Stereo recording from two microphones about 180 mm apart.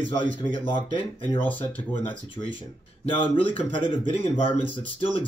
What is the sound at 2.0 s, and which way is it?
Speech, 30° left (ahead or behind).